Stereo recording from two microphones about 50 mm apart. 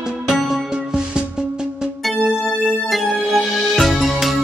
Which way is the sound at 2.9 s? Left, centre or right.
Centre.